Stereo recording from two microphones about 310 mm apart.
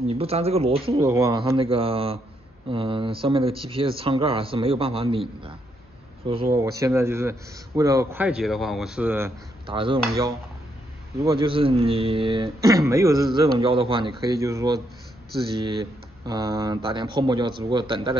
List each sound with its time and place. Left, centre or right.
0.0 s a man's voice: centre
6.2 s a man's voice: centre